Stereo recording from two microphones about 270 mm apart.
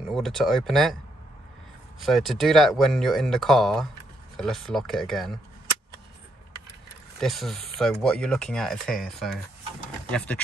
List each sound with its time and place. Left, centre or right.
0.1 s speech: centre
2.0 s speech: centre
7.2 s speech: centre